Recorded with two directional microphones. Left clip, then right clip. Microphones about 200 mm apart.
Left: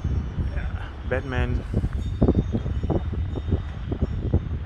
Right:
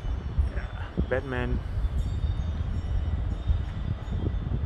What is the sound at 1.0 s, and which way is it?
Speech, 15° left (ahead or behind).